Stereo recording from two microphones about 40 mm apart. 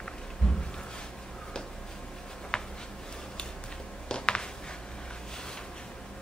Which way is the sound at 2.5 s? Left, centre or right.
Centre.